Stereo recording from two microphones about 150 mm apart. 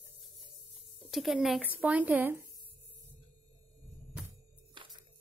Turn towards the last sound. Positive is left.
turn(degrees=-35)  # may be behind; listen again after turning